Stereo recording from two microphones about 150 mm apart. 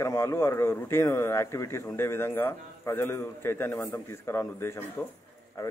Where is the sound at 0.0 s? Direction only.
20° left (ahead or behind).